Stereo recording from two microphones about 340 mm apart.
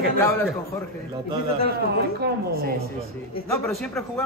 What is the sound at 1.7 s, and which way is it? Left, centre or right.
A man's voice, right.